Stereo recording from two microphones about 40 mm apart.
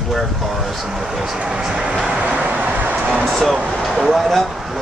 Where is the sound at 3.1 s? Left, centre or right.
Centre.